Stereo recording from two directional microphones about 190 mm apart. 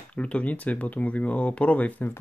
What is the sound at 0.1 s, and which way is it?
Speech, 5° left (ahead or behind).